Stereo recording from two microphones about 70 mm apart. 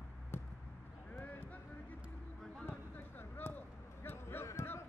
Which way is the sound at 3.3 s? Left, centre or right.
Left.